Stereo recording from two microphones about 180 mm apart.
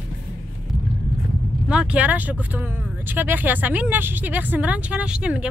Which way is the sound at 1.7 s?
5° right (ahead or behind).